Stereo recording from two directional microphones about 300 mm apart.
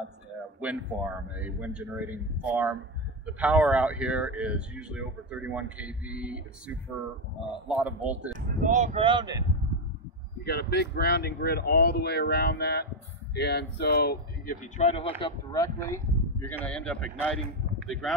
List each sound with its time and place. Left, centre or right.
0.6 s a man's voice: centre
7.6 s a man's voice: centre
8.3 s speech: right
10.4 s speech: left; by 17.4 s centre